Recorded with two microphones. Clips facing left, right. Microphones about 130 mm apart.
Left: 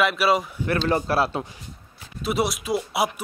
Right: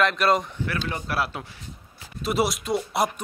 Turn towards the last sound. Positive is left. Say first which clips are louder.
# even
turn(degrees=5)  # may be behind; listen again after turning